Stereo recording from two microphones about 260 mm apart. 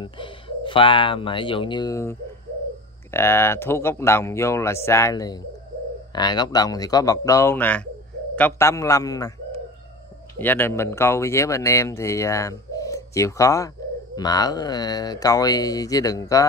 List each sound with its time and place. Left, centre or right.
0.0 s speech: centre
10.4 s speech: centre